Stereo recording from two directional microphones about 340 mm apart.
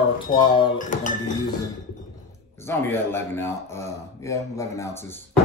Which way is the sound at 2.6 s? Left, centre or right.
Centre.